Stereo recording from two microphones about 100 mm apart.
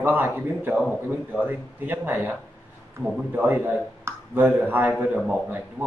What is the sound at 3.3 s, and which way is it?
A man's voice, 20° right (ahead or behind).